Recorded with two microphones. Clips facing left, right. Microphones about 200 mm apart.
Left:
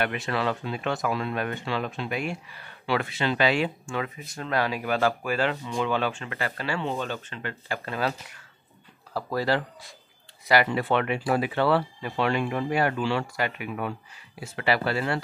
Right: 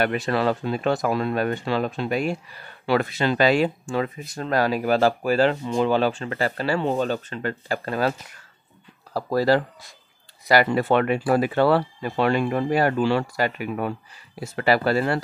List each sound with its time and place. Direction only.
0.0 s speech: 40° right (ahead or behind)
9.1 s speech: 40° right (ahead or behind)